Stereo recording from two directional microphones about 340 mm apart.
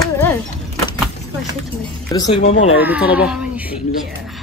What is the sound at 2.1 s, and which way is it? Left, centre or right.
Speech, centre.